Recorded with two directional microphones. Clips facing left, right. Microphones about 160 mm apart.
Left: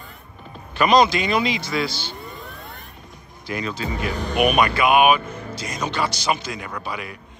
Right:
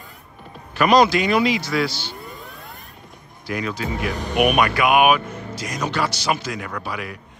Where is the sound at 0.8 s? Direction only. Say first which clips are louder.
Right 1 dB; 5° right (ahead or behind).